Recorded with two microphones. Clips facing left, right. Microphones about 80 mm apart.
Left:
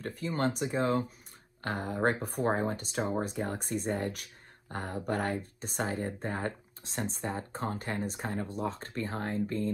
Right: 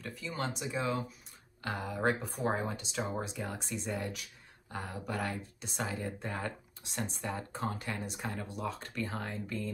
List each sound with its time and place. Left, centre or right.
0.0 s speech: left